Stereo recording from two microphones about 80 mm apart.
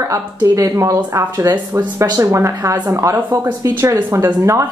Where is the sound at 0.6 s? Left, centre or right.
Right.